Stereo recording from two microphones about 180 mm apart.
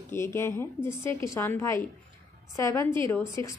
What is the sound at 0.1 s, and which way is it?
A woman's voice, 15° left (ahead or behind).